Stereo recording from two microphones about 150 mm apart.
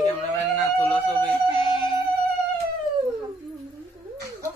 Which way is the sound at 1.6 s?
30° left (ahead or behind).